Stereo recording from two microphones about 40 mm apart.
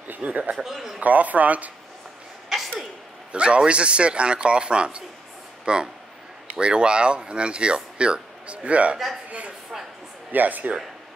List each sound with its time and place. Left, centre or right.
0.2 s speech: right
0.6 s speech: centre
1.0 s speech: right
3.3 s speech: right
8.9 s a man's voice: centre
10.3 s speech: right